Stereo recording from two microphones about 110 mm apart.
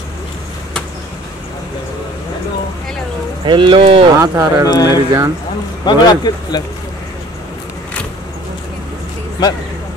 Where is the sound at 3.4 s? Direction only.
50° right (ahead or behind).